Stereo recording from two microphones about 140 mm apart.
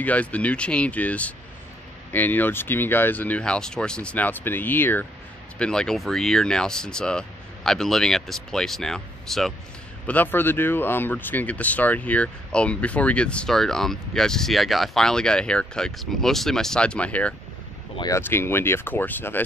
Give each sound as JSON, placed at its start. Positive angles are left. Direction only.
{"t": 0.0, "sound": "speech", "side_deg": 10}
{"t": 10.0, "sound": "speech", "side_deg": 15}